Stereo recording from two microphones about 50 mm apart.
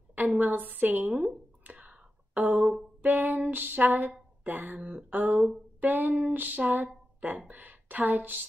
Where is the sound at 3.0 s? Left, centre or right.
Right.